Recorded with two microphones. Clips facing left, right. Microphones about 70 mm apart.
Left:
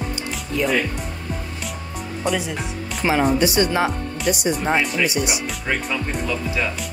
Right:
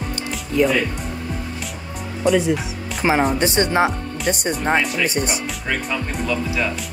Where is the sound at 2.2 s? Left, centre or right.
Centre.